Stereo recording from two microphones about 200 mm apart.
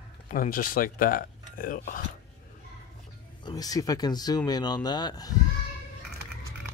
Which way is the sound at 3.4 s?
20° left (ahead or behind).